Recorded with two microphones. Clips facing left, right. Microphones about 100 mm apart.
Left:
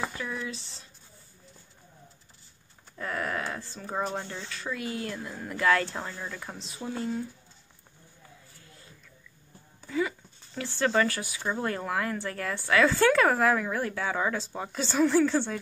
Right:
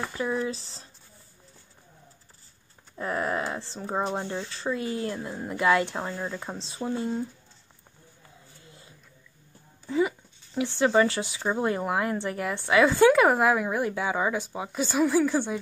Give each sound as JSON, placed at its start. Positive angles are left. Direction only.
{"t": 0.2, "sound": "speech", "side_deg": -35}
{"t": 3.0, "sound": "speech", "side_deg": -25}
{"t": 9.8, "sound": "speech", "side_deg": -20}